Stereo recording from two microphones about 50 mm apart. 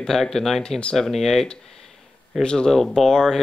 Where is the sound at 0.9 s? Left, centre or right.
Centre.